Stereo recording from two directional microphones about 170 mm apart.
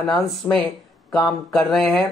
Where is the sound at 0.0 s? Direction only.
5° left (ahead or behind).